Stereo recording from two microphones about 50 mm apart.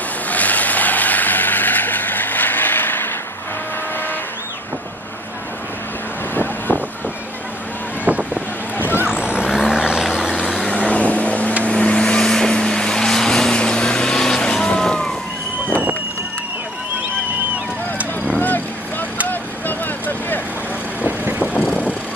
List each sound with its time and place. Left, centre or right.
0.3 s vehicle: left
6.3 s vehicle: left
8.0 s boat: right
9.0 s vehicle: centre
10.7 s vehicle: left
18.4 s vehicle: left